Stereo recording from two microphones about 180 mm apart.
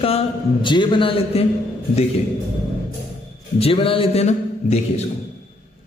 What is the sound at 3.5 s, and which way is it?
A man's voice, 30° left (ahead or behind).